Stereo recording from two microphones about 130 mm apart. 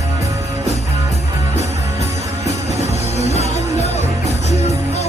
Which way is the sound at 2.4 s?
60° left (ahead or behind).